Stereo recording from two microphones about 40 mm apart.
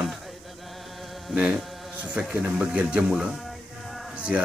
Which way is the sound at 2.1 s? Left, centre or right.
Right.